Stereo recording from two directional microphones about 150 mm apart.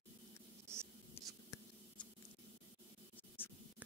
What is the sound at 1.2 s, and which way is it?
Whispering, 15° left (ahead or behind).